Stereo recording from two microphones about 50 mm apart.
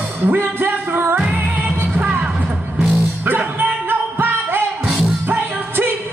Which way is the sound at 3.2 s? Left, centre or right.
Right.